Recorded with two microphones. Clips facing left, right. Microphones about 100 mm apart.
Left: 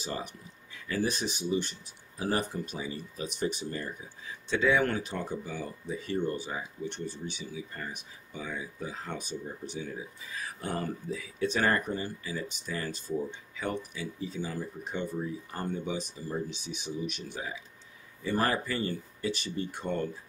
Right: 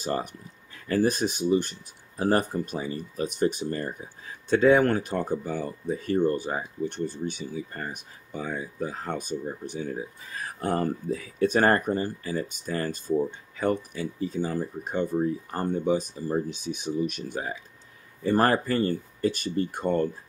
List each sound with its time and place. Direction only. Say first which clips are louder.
0.0 s speech: right 7 dB; 50° right (ahead or behind)